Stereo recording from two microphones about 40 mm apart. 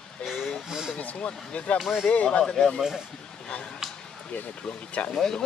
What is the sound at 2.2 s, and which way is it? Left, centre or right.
Speech, centre.